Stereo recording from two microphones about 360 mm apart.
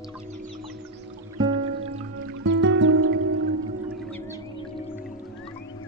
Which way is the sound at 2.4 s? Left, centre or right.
Right.